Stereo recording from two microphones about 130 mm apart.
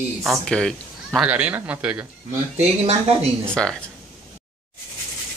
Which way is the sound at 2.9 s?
50° right (ahead or behind).